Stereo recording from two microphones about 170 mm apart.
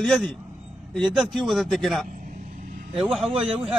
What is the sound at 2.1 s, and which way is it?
Vehicle, 50° right (ahead or behind).